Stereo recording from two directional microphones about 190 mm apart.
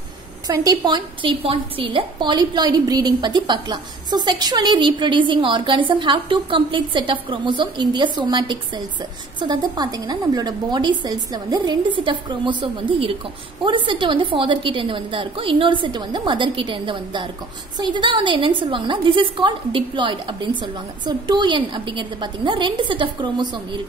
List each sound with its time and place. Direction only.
0.5 s a woman's voice: 20° right (ahead or behind)